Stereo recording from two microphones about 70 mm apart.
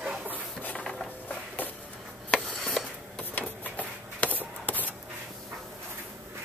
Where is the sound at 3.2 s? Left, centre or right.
Left.